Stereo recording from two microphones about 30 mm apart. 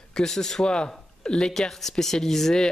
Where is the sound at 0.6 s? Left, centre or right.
Left.